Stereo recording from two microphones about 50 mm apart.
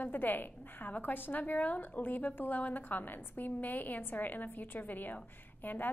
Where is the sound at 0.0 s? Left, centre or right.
Left.